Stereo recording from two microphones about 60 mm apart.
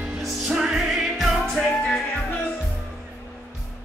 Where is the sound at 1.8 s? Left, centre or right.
Centre.